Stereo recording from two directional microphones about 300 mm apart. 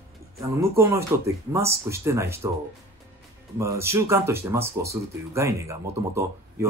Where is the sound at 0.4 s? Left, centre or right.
Centre.